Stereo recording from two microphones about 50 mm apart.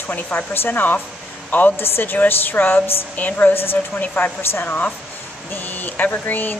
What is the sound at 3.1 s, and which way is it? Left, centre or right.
Speech, left.